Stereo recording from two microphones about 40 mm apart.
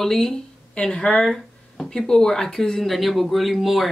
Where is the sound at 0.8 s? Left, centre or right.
Left.